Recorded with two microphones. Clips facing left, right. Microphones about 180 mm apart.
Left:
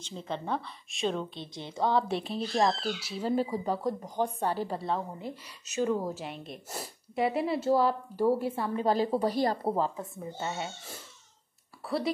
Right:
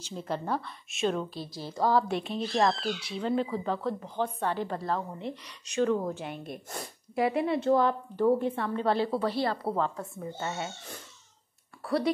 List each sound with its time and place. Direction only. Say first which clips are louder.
0.0 s a woman's voice: right 2 dB; 5° right (ahead or behind); by 4.3 s 15° left (ahead or behind)
4.4 s a woman's voice: even; 40° left (ahead or behind)
4.6 s a woman's voice: even; 5° left (ahead or behind)
8.8 s a woman's voice: even; 40° left (ahead or behind)
9.6 s speech: left 1 dB; 20° left (ahead or behind)
11.8 s speech: right 3 dB; centre (ahead or behind)